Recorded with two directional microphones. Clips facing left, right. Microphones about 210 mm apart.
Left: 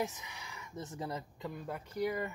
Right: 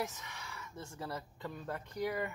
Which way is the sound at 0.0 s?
15° left (ahead or behind).